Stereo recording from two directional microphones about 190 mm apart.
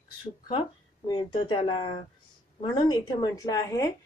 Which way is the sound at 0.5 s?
25° left (ahead or behind).